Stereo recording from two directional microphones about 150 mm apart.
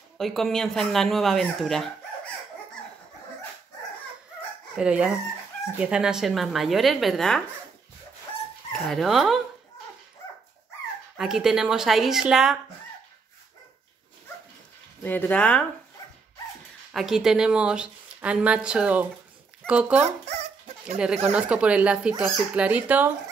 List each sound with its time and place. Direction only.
0.2 s a woman's voice: centre (ahead or behind)
4.7 s a woman's voice: 5° right (ahead or behind)
8.8 s a woman's voice: centre (ahead or behind)
11.1 s a woman's voice: 5° right (ahead or behind)
15.0 s speech: 10° left (ahead or behind)
16.9 s speech: centre (ahead or behind)
20.0 s dog: 50° right (ahead or behind)
20.9 s speech: 10° right (ahead or behind)